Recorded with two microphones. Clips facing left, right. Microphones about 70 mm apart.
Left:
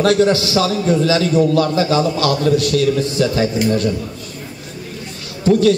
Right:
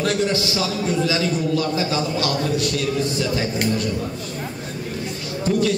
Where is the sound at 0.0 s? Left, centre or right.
Left.